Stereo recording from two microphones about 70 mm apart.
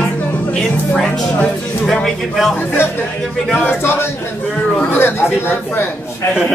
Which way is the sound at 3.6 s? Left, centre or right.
Left.